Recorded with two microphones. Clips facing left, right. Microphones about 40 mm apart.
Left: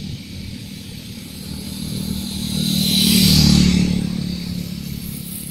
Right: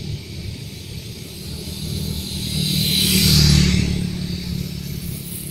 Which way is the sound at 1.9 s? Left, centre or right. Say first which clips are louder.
Left 3 dB; left.